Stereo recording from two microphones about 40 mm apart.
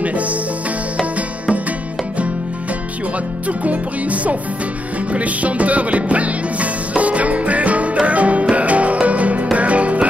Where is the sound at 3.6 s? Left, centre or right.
Right.